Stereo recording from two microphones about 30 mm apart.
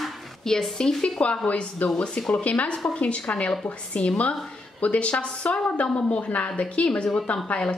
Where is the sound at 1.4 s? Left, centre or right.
Left.